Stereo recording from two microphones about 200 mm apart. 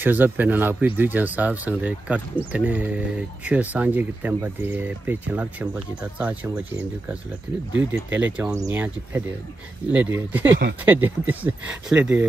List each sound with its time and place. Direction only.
0.0 s speech: 10° right (ahead or behind)
10.5 s speech: 55° right (ahead or behind)
10.9 s speech: 10° right (ahead or behind)